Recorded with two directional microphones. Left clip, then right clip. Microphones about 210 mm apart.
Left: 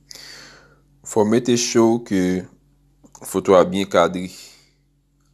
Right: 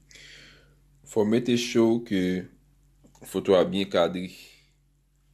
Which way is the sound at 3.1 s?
10° left (ahead or behind).